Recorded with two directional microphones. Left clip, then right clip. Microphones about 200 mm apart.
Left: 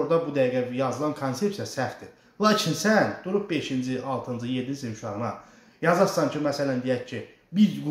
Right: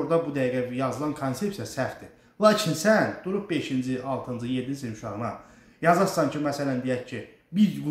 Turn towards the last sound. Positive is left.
turn(degrees=0)  # may be behind; listen again after turning